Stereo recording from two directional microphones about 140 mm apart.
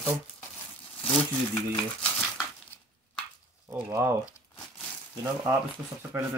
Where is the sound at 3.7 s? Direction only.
20° right (ahead or behind).